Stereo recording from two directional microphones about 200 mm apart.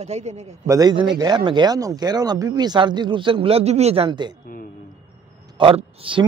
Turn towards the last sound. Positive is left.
turn(degrees=-25)  # may be behind; listen again after turning